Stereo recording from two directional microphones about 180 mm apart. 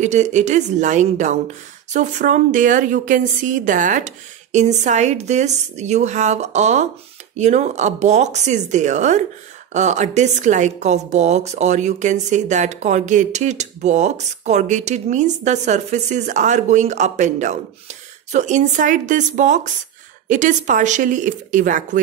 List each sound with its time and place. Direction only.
0.0 s a woman's voice: 40° right (ahead or behind)